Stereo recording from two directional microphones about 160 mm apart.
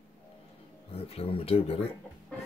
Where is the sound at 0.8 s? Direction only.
40° left (ahead or behind).